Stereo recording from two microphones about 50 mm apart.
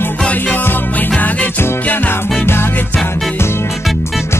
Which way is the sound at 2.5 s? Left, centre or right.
Left.